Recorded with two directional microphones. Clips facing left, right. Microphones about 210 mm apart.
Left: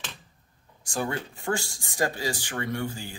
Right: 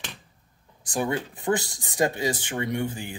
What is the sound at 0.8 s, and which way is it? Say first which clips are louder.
Speech: right 3 dB; 20° right (ahead or behind).